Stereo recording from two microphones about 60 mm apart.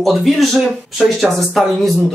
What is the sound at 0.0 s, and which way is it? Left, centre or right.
Speech, centre.